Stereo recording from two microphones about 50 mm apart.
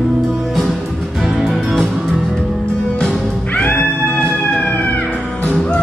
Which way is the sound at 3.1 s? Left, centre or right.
Left.